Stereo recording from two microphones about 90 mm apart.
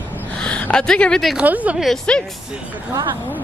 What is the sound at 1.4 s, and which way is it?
Speech, 15° right (ahead or behind).